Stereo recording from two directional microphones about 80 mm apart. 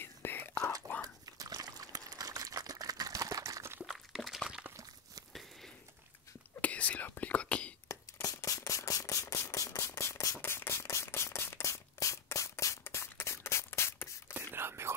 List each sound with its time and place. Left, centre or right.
0.0 s whispering: left
1.0 s a sound: right
3.4 s liquid: right
3.8 s liquid: centre
6.6 s whispering: centre
7.9 s a sound: left
8.4 s mechanisms: left
14.5 s whispering: right